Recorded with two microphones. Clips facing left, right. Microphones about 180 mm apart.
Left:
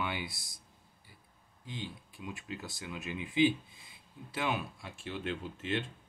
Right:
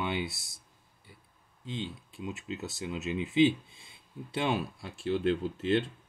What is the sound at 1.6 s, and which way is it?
Speech, 25° right (ahead or behind).